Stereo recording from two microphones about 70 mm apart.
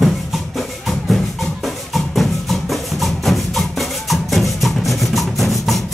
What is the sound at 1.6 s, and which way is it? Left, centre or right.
Music, centre.